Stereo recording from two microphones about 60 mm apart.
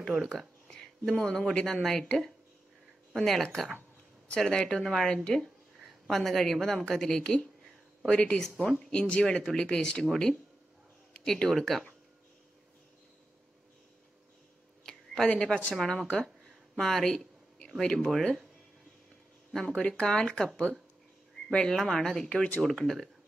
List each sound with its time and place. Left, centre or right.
0.0 s speech: centre
0.7 s a woman's voice: centre
11.1 s speech: centre
14.8 s a sound: centre
15.2 s speech: centre
15.7 s speech: centre
16.4 s a sound: centre
19.5 s speech: centre
22.3 s speech: left
22.6 s speech: centre